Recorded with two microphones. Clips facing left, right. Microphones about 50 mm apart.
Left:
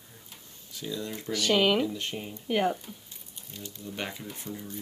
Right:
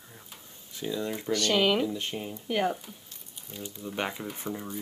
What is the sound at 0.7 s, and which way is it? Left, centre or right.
Speech, right.